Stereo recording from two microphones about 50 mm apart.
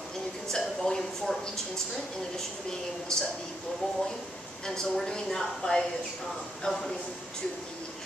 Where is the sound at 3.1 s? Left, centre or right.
Centre.